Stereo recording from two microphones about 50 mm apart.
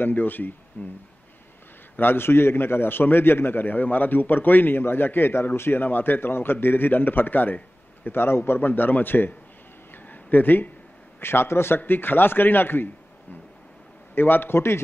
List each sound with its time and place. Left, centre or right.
0.0 s speech: left
2.0 s a man's voice: left
8.5 s a man's voice: left
10.0 s a sound: left
11.1 s a man's voice: left
11.8 s a man's voice: left